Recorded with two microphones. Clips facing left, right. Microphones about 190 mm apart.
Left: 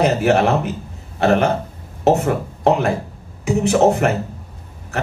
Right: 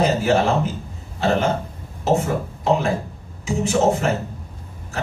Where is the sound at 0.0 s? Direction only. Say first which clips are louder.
Left 3 dB; 65° left (ahead or behind).